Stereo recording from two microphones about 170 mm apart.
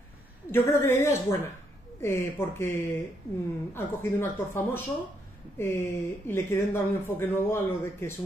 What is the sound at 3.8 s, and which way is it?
Speech, 10° left (ahead or behind).